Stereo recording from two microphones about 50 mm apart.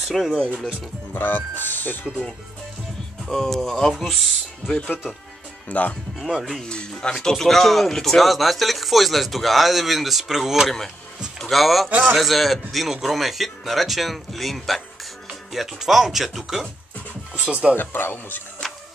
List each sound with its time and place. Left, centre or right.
0.0 s speech: centre
1.1 s speech: left
3.3 s speech: centre
4.6 s speech: left
6.1 s speech: centre
6.6 s speech: centre
7.2 s speech: centre
17.4 s speech: right
17.7 s speech: left
18.6 s music: centre